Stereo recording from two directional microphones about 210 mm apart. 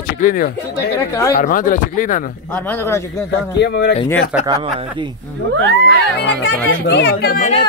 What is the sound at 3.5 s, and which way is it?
Speech, 55° left (ahead or behind).